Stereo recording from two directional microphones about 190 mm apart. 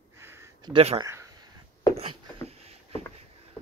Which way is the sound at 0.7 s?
30° right (ahead or behind).